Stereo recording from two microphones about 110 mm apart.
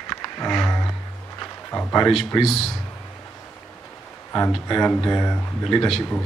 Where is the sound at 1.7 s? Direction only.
15° left (ahead or behind).